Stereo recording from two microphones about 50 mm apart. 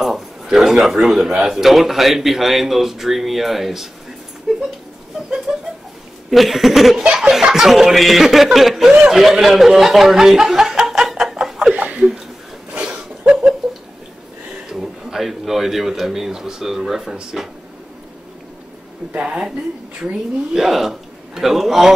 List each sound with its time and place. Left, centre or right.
0.0 s a sound: centre
1.1 s a man's voice: centre
4.5 s a sound: centre
6.3 s a man's voice: centre
9.1 s snicker: centre
11.7 s a sound: right
14.7 s speech: centre
19.1 s a woman's voice: centre
20.5 s a man's voice: centre